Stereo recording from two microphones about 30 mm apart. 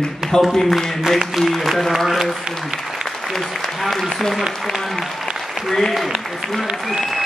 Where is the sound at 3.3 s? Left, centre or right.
Centre.